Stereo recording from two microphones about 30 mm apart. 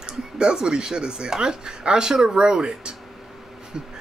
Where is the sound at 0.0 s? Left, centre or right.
Right.